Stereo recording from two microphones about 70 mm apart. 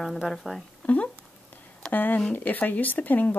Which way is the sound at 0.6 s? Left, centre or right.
Centre.